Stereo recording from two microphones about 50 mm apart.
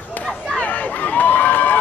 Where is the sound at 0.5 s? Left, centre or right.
Left.